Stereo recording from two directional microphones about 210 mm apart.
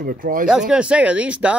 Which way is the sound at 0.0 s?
40° right (ahead or behind).